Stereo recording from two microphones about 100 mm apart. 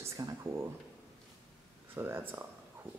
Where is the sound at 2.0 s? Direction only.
20° right (ahead or behind).